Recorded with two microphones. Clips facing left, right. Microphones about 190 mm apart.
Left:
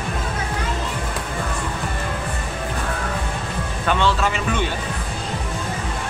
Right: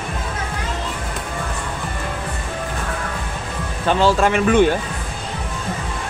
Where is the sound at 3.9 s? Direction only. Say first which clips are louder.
Right 5 dB; 40° right (ahead or behind).